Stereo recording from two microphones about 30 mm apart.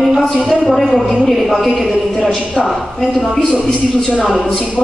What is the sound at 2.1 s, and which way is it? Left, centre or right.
Speech, left.